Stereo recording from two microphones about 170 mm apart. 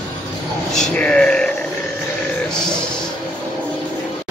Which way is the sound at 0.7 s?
5° left (ahead or behind).